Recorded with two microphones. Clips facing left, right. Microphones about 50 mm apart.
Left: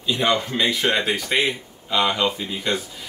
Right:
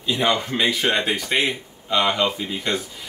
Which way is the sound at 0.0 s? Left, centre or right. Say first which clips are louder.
Even; centre.